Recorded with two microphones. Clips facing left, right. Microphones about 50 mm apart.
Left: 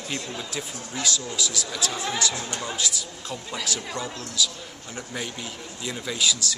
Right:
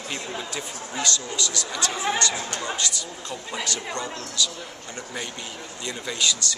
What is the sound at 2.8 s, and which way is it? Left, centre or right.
Speech, centre.